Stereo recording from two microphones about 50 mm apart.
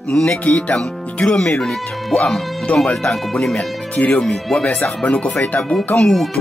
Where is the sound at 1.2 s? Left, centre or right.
Centre.